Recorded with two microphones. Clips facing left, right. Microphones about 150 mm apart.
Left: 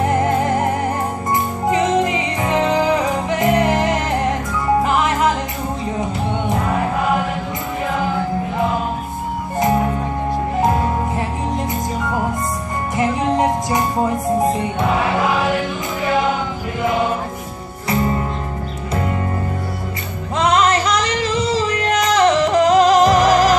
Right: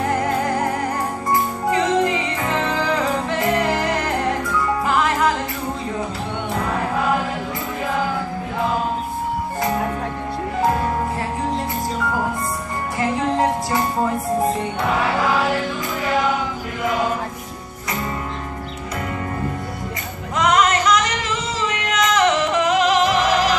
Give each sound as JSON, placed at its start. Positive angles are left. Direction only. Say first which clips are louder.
{"t": 0.0, "sound": "music", "louder": "left 3 dB", "side_deg": 20}
{"t": 12.9, "sound": "music", "louder": "left 3 dB", "side_deg": 20}
{"t": 14.8, "sound": "music", "louder": "left 2 dB", "side_deg": 20}
{"t": 20.3, "sound": "female singing", "louder": "left 2 dB", "side_deg": 30}